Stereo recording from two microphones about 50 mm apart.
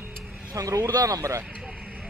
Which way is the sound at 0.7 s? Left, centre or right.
Right.